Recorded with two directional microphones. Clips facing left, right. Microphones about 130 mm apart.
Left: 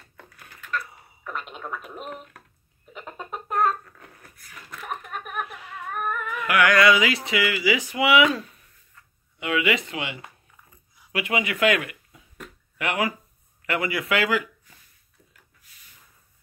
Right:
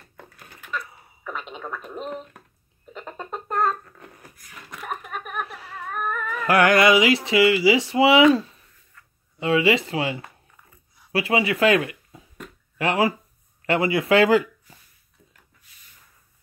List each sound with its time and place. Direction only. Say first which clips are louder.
0.2 s a sound: right 2 dB; 15° right (ahead or behind)
0.7 s a sound: left 1 dB; centre (ahead or behind)
2.9 s music: right 2 dB; 5° left (ahead or behind)
4.0 s wheeze: right 3 dB; 5° right (ahead or behind)
5.4 s whimper: right 1 dB; 35° right (ahead or behind)
6.2 s music: right 4 dB; 35° right (ahead or behind)
6.8 s speech: right 2 dB; 25° right (ahead or behind)